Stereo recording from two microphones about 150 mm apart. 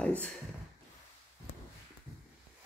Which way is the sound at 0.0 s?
10° left (ahead or behind).